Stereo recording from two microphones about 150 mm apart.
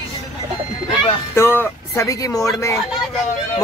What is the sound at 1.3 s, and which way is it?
A man's voice, 15° left (ahead or behind).